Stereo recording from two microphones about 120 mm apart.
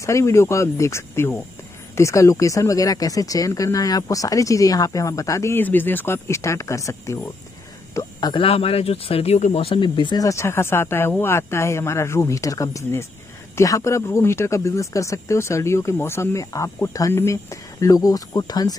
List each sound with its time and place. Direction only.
0.0 s speech: 25° left (ahead or behind); by 10.2 s 40° left (ahead or behind)
10.2 s speech: 25° left (ahead or behind)